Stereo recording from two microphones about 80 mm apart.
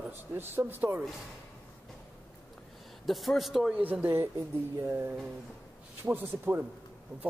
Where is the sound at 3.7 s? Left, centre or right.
Centre.